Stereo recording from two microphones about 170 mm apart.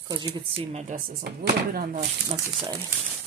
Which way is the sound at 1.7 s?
55° right (ahead or behind).